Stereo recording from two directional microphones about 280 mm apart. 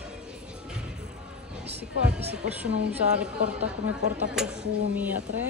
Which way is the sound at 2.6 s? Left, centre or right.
Centre.